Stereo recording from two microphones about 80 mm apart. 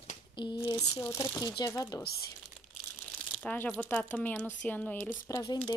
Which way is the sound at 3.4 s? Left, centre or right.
Left.